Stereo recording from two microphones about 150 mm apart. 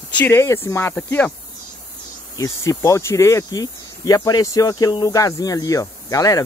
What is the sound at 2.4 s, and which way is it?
Speech, 20° left (ahead or behind).